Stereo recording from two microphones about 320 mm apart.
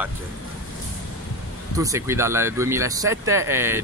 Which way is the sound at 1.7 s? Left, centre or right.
Centre.